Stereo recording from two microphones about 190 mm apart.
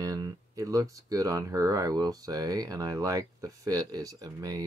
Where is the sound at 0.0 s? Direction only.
20° right (ahead or behind).